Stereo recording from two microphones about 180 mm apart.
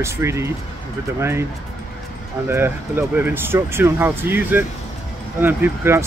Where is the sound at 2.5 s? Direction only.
10° right (ahead or behind).